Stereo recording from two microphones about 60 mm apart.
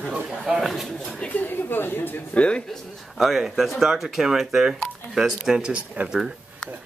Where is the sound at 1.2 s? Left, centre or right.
Left.